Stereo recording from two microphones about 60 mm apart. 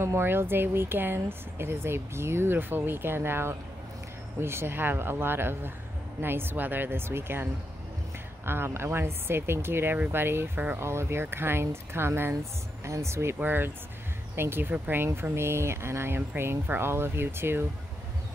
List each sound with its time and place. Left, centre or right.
0.0 s speech: right
8.5 s speech: right
10.8 s speech: right
13.4 s speech: right
15.3 s speech: right